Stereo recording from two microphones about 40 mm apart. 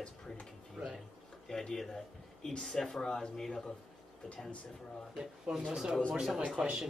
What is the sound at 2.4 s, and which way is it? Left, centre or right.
Speech, centre.